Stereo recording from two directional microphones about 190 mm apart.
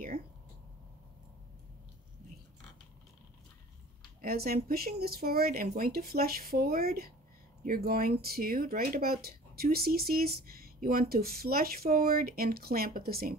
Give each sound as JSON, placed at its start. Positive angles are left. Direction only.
{"t": 4.2, "sound": "speech", "side_deg": -50}